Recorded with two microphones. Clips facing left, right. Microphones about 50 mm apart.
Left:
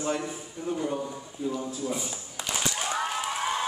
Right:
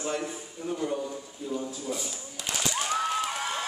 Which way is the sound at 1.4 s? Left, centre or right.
Left.